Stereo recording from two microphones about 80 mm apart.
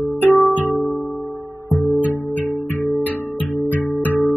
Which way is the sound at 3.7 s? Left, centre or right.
Left.